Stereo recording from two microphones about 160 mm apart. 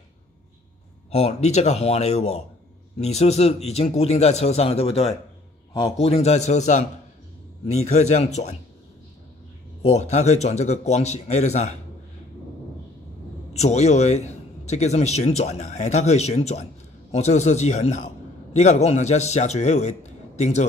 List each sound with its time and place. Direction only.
1.1 s a man's voice: 45° left (ahead or behind)
5.7 s a man's voice: 20° left (ahead or behind)
5.9 s a man's voice: 40° left (ahead or behind)
9.8 s a man's voice: 45° left (ahead or behind)
13.5 s a man's voice: 45° left (ahead or behind)